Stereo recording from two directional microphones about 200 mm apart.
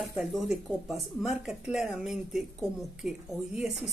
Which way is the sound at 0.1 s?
Centre (ahead or behind).